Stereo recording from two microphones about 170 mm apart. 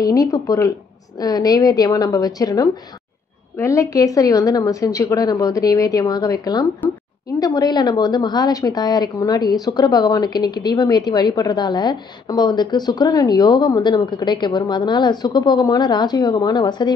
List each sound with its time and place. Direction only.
0.0 s a woman's voice: 20° left (ahead or behind)